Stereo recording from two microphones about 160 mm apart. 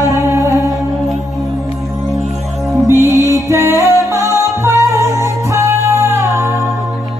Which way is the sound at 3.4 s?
20° right (ahead or behind).